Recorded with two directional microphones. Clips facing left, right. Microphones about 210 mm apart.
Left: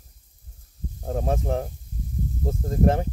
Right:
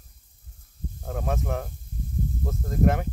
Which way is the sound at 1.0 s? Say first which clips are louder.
Left 4 dB; 30° left (ahead or behind).